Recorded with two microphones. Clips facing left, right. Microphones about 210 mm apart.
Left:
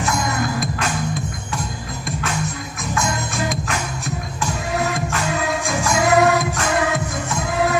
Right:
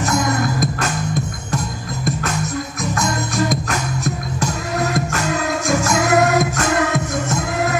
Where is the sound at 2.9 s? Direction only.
40° right (ahead or behind).